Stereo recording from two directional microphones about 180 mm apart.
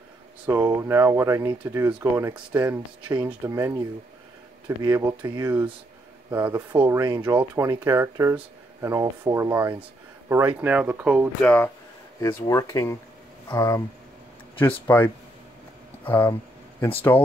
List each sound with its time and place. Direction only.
0.5 s speech: 10° right (ahead or behind)
11.4 s speech: 10° left (ahead or behind)